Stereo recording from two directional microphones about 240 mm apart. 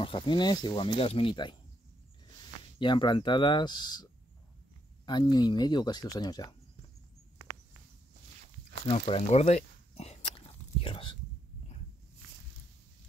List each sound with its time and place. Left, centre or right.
0.0 s speech: left
2.8 s speech: centre
8.8 s walk: left